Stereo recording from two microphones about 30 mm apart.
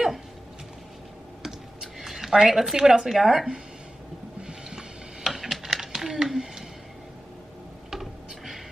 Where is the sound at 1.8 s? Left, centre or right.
Centre.